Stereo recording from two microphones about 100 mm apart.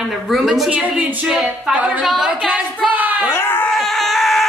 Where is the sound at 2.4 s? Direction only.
15° right (ahead or behind).